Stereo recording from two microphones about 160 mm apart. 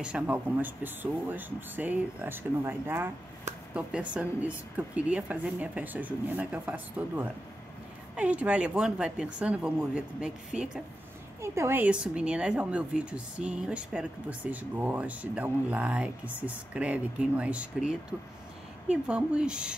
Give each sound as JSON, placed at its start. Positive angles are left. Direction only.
{"t": 0.0, "sound": "speech", "side_deg": -10}
{"t": 11.4, "sound": "speech", "side_deg": -15}